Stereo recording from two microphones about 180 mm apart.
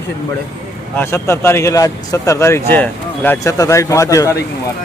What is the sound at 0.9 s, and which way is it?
A man's voice, 15° left (ahead or behind).